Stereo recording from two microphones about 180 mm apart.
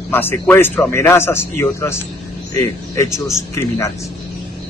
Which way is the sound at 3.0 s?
15° left (ahead or behind).